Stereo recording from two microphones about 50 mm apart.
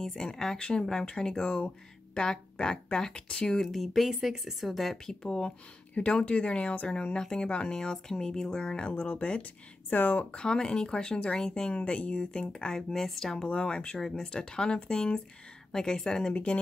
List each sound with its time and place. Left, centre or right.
0.0 s speech: centre
3.6 s speech: centre
4.1 s a woman's voice: centre
4.6 s speech: centre
5.2 s speech: centre
8.8 s speech: left
10.3 s speech: centre
11.7 s speech: left
12.9 s speech: centre
13.5 s speech: centre